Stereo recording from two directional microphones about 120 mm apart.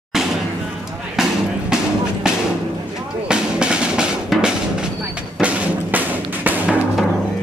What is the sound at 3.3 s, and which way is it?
Music, 5° right (ahead or behind).